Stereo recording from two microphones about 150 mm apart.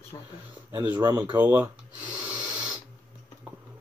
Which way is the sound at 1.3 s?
15° right (ahead or behind).